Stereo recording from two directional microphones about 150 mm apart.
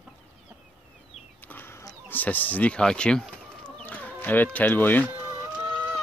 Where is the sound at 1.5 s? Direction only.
15° left (ahead or behind).